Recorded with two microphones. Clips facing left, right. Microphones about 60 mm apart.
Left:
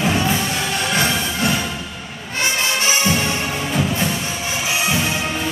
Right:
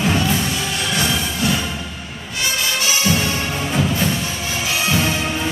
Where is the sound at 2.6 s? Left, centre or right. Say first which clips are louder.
Even; left.